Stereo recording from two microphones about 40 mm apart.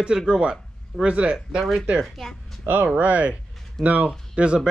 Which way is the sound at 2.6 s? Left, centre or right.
Right.